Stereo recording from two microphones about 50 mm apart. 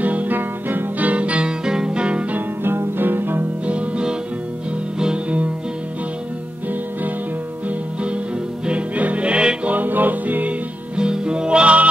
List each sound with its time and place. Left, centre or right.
0.0 s music: right
0.4 s music: right
2.3 s music: right
3.6 s music: right
8.6 s music: right
9.7 s music: right
11.0 s music: centre